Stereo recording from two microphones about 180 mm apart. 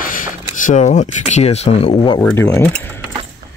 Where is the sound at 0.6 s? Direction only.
45° left (ahead or behind).